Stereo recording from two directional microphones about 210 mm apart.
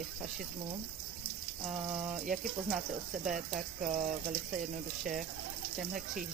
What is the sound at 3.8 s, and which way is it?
Speech, 40° right (ahead or behind).